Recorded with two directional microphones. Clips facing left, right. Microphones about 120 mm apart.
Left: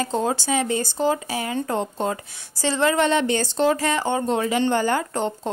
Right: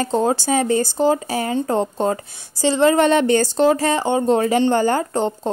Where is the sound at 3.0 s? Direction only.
45° right (ahead or behind).